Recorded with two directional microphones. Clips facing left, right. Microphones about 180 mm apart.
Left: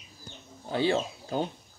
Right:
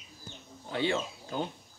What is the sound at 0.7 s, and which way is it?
Speech, 35° left (ahead or behind).